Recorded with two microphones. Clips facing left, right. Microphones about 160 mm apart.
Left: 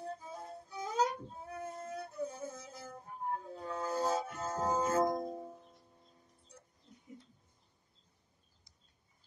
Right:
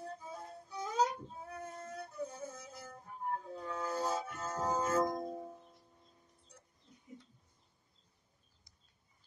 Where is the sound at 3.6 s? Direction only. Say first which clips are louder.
Left 3 dB; 30° left (ahead or behind).